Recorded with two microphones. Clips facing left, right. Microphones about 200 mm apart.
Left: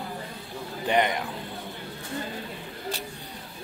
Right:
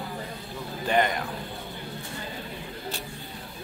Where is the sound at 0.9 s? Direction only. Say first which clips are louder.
Even; 20° left (ahead or behind).